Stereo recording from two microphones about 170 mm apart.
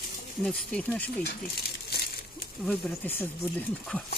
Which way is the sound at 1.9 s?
65° left (ahead or behind).